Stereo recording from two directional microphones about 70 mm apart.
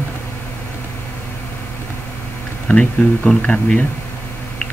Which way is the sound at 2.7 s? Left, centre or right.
Centre.